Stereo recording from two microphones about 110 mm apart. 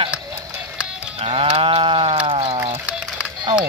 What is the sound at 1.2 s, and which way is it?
Sheep, 55° right (ahead or behind).